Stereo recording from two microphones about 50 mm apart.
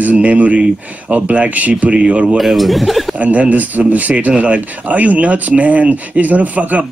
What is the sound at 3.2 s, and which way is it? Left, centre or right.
Speech, right.